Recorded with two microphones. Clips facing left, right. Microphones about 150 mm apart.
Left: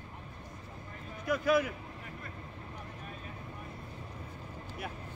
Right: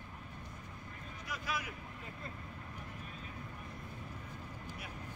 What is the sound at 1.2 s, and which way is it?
Speech, 55° left (ahead or behind).